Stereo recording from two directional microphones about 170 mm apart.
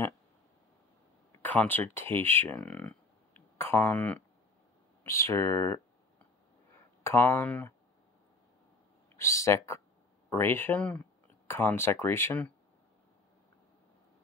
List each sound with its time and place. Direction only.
1.3 s speech: 10° left (ahead or behind)
7.0 s speech: 15° left (ahead or behind)
9.1 s speech: 15° left (ahead or behind)